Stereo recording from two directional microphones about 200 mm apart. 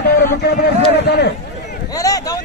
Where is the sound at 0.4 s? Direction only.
55° left (ahead or behind).